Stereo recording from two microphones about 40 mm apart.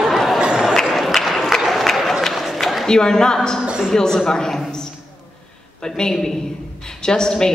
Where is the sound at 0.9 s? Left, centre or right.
Centre.